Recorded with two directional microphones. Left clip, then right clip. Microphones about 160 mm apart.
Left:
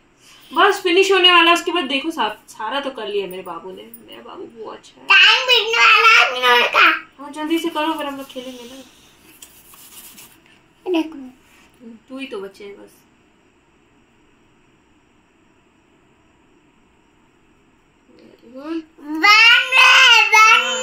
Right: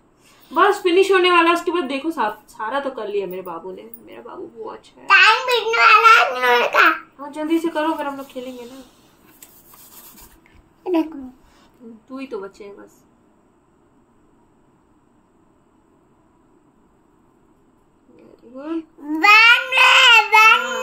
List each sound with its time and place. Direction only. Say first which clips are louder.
0.6 s a woman's voice: left 1 dB; 5° right (ahead or behind)
10.8 s a child's voice: even; 20° right (ahead or behind)
12.1 s a woman's voice: left 1 dB; centre (ahead or behind)
19.0 s babbling: even; 25° right (ahead or behind)